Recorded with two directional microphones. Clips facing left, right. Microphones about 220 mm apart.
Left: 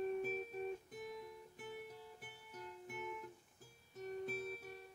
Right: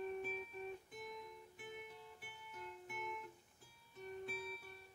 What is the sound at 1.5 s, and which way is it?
Guitar, 40° left (ahead or behind).